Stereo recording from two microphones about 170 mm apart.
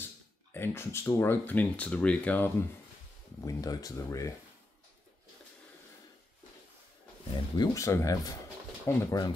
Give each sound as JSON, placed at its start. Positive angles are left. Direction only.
{"t": 0.5, "sound": "speech", "side_deg": 15}
{"t": 3.3, "sound": "speech", "side_deg": 20}
{"t": 7.2, "sound": "speech", "side_deg": 25}